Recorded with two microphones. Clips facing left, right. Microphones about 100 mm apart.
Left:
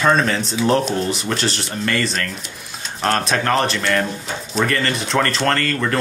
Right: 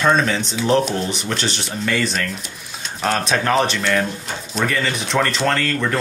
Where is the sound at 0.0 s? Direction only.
Centre (ahead or behind).